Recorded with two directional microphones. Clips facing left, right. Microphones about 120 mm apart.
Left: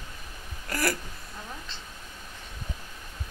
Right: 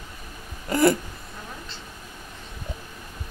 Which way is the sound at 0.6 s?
25° right (ahead or behind).